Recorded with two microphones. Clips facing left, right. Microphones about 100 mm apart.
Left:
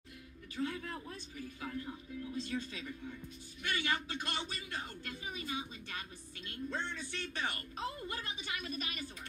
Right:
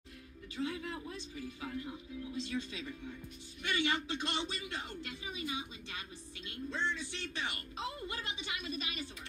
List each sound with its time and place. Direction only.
0.6 s a woman's voice: 40° left (ahead or behind)
3.6 s a man's voice: 25° right (ahead or behind)
5.0 s a woman's voice: 40° left (ahead or behind)